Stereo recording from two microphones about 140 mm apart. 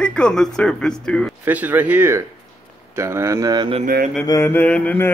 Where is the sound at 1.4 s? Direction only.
10° right (ahead or behind).